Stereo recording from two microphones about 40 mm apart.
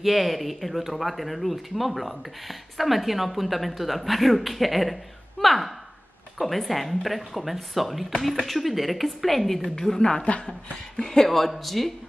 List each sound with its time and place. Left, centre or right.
0.0 s speech: centre
9.8 s a woman's voice: centre
10.2 s a woman's voice: left
11.0 s a woman's voice: centre
11.2 s speech: centre